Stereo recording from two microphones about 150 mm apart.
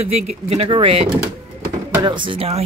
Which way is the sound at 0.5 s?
40° right (ahead or behind).